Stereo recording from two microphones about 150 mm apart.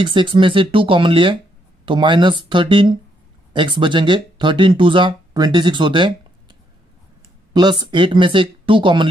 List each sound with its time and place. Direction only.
0.0 s speech: 35° right (ahead or behind)
7.5 s speech: 30° right (ahead or behind)